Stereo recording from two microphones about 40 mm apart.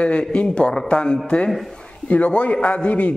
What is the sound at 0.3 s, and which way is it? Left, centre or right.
A man's voice, left.